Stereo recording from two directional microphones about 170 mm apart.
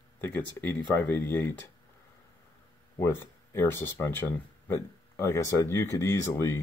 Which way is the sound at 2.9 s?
15° left (ahead or behind).